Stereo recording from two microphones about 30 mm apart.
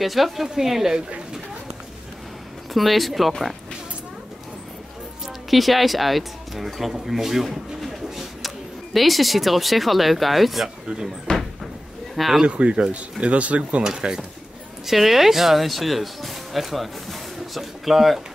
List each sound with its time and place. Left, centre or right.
0.0 s speech: centre
2.7 s speech: centre
5.5 s speech: centre
11.3 s cupboard open or close: left
12.4 s speech: right
12.9 s speech: right
13.8 s speech: right
14.9 s speech: centre